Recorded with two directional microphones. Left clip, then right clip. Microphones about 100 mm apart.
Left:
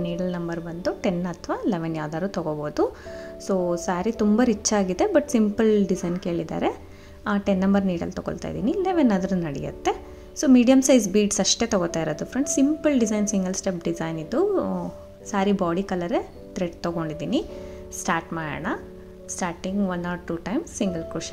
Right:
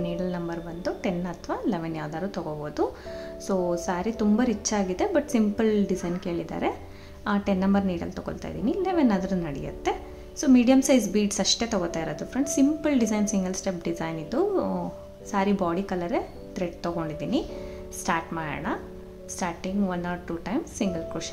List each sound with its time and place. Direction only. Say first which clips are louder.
0.0 s a woman's voice: left 2 dB; 40° left (ahead or behind)
3.4 s a woman's voice: left 2 dB; 30° left (ahead or behind)